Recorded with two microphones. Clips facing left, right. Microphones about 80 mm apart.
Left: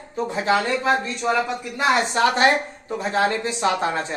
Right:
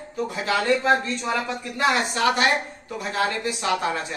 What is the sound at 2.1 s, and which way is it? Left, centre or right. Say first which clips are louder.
A woman's voice: left 3 dB; left.